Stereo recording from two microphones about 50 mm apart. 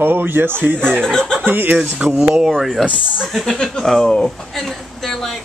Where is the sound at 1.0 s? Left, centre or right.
Centre.